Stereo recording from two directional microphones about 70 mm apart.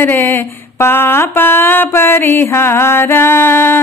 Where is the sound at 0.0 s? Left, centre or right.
Left.